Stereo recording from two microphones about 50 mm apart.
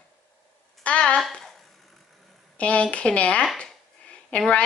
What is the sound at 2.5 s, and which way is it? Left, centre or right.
A woman's voice, left.